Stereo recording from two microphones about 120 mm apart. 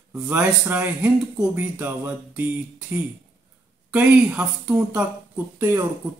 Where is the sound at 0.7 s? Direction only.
15° right (ahead or behind).